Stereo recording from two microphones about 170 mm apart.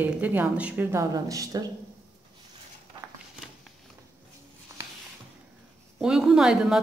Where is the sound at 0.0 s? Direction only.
10° right (ahead or behind).